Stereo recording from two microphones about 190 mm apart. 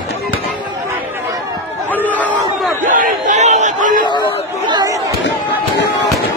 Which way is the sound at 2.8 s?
45° right (ahead or behind).